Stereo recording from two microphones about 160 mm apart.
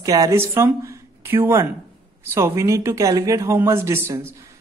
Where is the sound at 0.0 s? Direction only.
20° right (ahead or behind).